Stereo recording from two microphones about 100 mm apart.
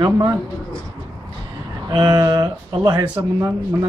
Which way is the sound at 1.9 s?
40° right (ahead or behind).